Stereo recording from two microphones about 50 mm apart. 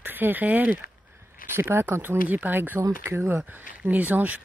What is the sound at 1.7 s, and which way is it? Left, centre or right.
Speech, right.